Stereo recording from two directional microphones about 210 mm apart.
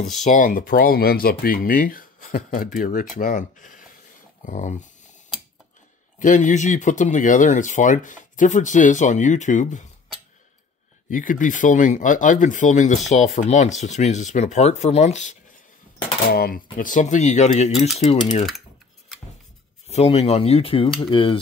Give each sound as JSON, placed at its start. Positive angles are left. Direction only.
{"t": 0.2, "sound": "speech", "side_deg": 35}
{"t": 6.1, "sound": "speech", "side_deg": 35}
{"t": 11.1, "sound": "speech", "side_deg": 40}
{"t": 16.3, "sound": "speech", "side_deg": 45}
{"t": 19.9, "sound": "speech", "side_deg": 30}